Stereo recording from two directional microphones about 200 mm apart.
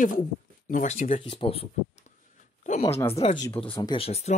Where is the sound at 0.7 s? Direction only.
40° left (ahead or behind).